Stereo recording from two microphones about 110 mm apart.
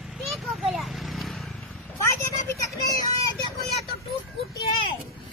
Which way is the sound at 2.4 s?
30° left (ahead or behind).